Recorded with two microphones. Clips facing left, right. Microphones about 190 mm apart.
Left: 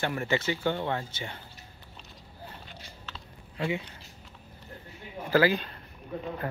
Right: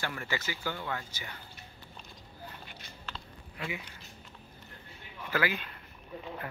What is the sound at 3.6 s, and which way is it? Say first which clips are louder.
Speech: left 8 dB; 30° left (ahead or behind).